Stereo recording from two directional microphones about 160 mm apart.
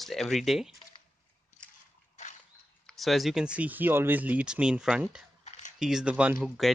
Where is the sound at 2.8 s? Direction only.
Centre (ahead or behind).